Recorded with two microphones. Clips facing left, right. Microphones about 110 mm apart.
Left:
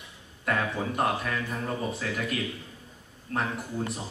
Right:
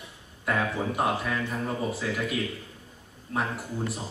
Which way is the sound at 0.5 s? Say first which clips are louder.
Right 1 dB; 5° right (ahead or behind).